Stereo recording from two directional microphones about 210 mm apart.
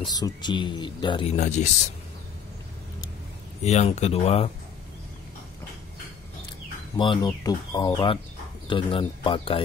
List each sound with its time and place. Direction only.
0.1 s speech: 20° left (ahead or behind)
1.3 s speech: 35° left (ahead or behind)
3.6 s speech: 30° left (ahead or behind)
7.0 s speech: 20° left (ahead or behind)